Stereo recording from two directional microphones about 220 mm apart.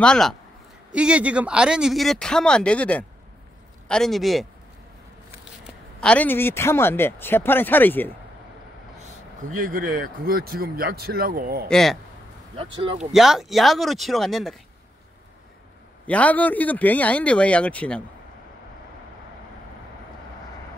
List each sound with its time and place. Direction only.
0.0 s speech: 5° left (ahead or behind)
5.9 s speech: 5° left (ahead or behind)
9.7 s speech: 40° right (ahead or behind)
11.7 s speech: centre (ahead or behind)
12.7 s speech: 25° right (ahead or behind)
13.1 s speech: centre (ahead or behind)
16.1 s speech: 5° left (ahead or behind)